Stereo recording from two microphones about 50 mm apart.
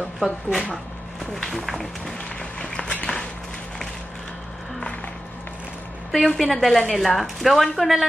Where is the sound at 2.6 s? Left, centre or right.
Centre.